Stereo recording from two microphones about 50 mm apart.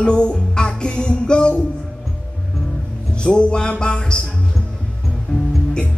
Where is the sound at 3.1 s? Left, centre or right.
Centre.